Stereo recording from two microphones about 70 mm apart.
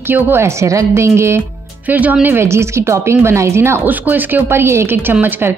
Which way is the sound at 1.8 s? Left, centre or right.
Right.